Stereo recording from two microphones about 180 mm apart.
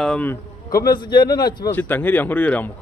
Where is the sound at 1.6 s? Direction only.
10° left (ahead or behind).